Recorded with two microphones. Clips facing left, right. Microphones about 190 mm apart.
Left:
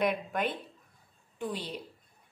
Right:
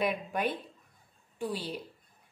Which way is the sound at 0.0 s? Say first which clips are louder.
Left 1 dB; 10° right (ahead or behind).